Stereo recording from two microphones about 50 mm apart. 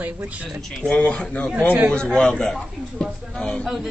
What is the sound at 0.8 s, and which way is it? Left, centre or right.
A man's voice, left.